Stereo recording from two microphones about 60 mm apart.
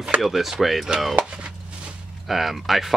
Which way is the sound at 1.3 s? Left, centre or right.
Centre.